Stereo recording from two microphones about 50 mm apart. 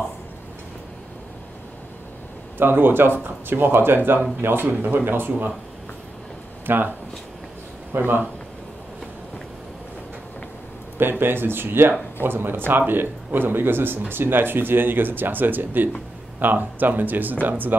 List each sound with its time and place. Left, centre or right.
2.6 s speech: right
6.6 s speech: right
7.9 s speech: right
11.0 s speech: right